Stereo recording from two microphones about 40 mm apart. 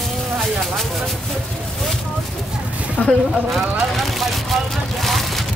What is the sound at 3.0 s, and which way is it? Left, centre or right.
Speech, left.